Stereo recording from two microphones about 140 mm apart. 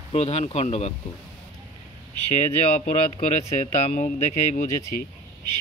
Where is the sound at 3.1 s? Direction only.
55° left (ahead or behind).